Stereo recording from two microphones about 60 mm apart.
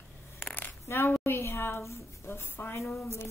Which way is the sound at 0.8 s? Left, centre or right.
Left.